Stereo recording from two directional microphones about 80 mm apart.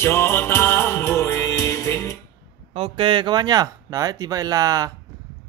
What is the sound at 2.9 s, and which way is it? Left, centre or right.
Speech, right.